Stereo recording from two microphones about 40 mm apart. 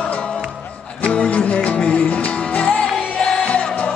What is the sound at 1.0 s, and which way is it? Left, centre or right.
Music, left.